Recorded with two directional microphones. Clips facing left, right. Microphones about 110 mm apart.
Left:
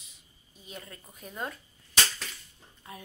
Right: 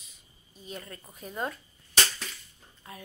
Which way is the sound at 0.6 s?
5° left (ahead or behind).